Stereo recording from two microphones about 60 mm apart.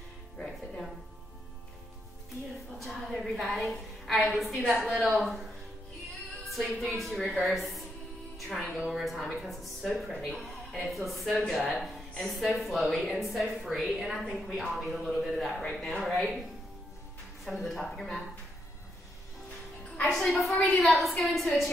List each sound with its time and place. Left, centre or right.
0.4 s music: centre
2.8 s a woman's voice: centre
6.8 s speech: centre
8.7 s speech: centre
15.7 s speech: centre
17.5 s speech: centre
20.0 s a woman's voice: centre